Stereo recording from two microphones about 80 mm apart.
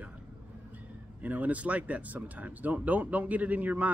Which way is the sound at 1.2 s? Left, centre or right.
Right.